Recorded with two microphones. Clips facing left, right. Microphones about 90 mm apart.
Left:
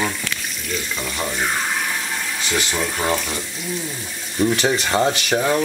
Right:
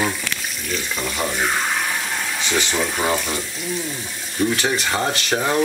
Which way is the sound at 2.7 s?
5° right (ahead or behind).